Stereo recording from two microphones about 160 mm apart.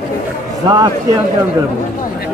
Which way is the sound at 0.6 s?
25° right (ahead or behind).